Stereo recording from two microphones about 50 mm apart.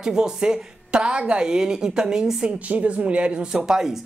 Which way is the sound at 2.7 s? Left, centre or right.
Right.